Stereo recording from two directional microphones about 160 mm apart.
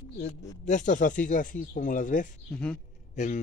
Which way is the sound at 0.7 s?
50° left (ahead or behind).